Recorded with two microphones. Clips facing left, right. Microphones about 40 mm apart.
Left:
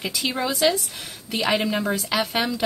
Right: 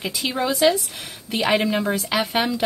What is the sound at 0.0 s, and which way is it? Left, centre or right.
Speech, centre.